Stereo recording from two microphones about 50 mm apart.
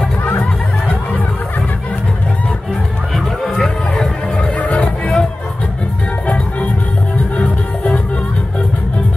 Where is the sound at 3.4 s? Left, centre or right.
Centre; by 5.1 s left.